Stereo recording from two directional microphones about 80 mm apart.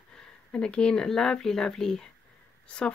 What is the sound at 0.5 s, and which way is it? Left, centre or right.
Speech, centre.